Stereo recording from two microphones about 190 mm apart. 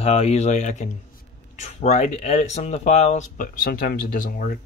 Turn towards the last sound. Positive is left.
turn(degrees=45)  # may be behind; listen again after turning